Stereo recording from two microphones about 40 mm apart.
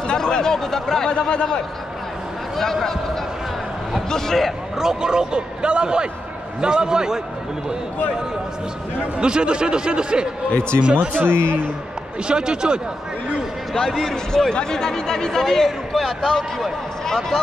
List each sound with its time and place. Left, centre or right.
0.1 s a man's voice: centre
1.2 s a man's voice: left
2.5 s a man's voice: centre
4.1 s a man's voice: centre
4.5 s a man's voice: centre
9.2 s a man's voice: right
11.1 s a man's voice: right
12.3 s a man's voice: right
13.7 s a man's voice: centre
14.5 s a man's voice: centre